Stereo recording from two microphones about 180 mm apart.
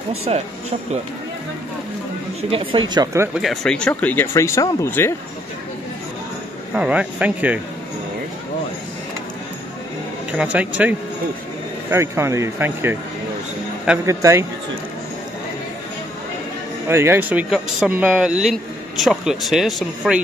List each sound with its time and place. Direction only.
0.3 s speech: 35° right (ahead or behind)
2.5 s speech: 30° right (ahead or behind)
3.3 s speech: centre (ahead or behind)
6.7 s speech: 5° right (ahead or behind)
10.3 s speech: 5° right (ahead or behind)
14.0 s speech: 15° right (ahead or behind)
16.8 s speech: 15° right (ahead or behind)